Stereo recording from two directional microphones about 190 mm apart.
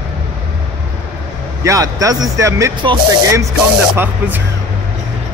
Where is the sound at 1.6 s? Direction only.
15° right (ahead or behind).